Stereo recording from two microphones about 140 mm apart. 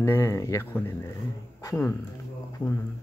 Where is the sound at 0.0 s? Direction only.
20° left (ahead or behind).